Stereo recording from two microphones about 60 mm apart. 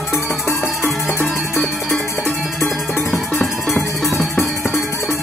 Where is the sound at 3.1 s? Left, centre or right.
Left.